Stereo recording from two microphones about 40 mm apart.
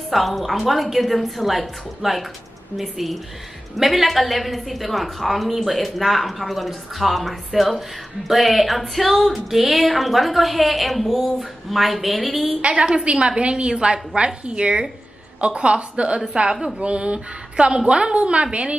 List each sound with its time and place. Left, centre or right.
0.1 s music: centre
12.6 s a woman's voice: right
16.5 s speech: centre
16.8 s a woman's voice: right